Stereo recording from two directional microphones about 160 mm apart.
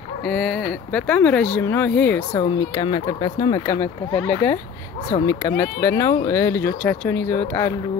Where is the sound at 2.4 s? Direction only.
25° left (ahead or behind).